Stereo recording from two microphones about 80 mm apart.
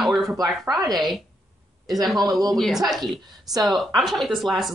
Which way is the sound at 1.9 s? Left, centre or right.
Centre.